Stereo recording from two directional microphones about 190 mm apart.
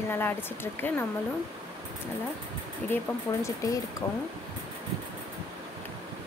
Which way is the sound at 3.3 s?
15° left (ahead or behind).